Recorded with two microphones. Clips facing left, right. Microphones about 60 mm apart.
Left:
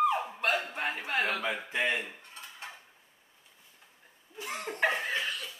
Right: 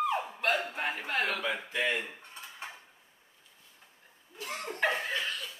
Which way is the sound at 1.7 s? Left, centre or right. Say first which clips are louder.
Left 1 dB; left.